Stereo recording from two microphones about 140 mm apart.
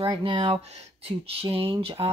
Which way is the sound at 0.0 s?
40° right (ahead or behind).